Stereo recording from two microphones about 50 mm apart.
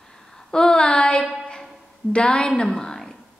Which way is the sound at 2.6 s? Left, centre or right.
Centre.